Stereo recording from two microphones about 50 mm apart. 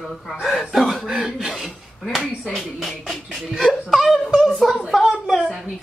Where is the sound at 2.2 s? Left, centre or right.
Centre.